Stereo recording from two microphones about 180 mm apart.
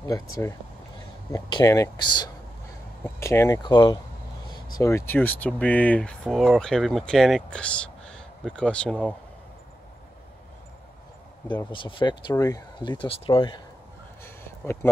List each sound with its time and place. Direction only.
0.0 s speech: 15° left (ahead or behind)
11.7 s speech: 25° left (ahead or behind)
14.2 s a sound: 15° left (ahead or behind)